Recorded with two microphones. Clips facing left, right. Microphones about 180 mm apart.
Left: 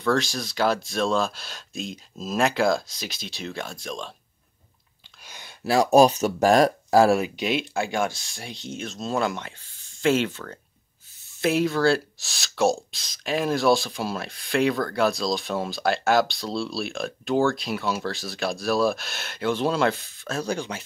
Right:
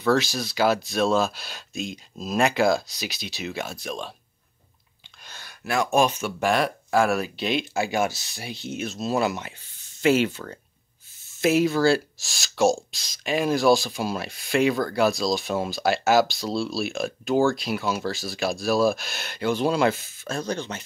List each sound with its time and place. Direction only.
0.0 s speech: 5° right (ahead or behind)
5.2 s a sound: 15° left (ahead or behind)
5.6 s speech: 35° left (ahead or behind)
7.2 s speech: 15° left (ahead or behind)
7.7 s speech: 5° right (ahead or behind)